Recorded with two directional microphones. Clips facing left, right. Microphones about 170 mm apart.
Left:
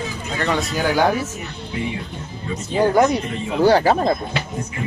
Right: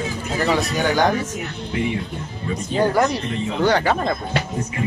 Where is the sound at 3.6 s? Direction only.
35° left (ahead or behind).